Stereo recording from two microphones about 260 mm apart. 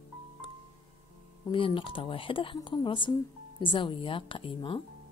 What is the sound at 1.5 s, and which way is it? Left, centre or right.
Speech, centre.